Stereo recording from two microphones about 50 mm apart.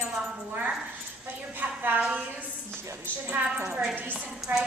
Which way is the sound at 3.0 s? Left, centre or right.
Right.